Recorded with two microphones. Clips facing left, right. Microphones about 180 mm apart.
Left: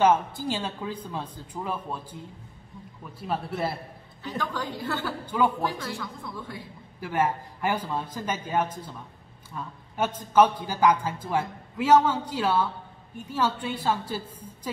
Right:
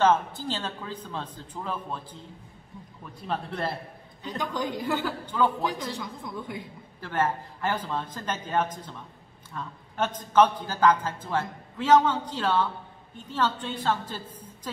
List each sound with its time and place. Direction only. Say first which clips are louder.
0.0 s speech: left 1 dB; 10° left (ahead or behind)
3.2 s speech: left 2 dB; 5° left (ahead or behind)
4.4 s a woman's voice: right 2 dB; 15° right (ahead or behind)
5.2 s speech: left 2 dB; 10° left (ahead or behind)
5.8 s a woman's voice: right 1 dB; 20° right (ahead or behind)
7.0 s speech: left 1 dB; 10° left (ahead or behind)